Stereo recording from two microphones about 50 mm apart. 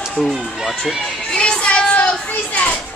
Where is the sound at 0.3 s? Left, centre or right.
Centre.